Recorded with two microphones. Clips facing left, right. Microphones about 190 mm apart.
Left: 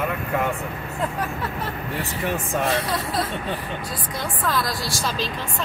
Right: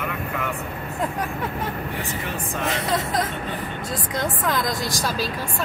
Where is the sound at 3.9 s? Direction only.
20° right (ahead or behind).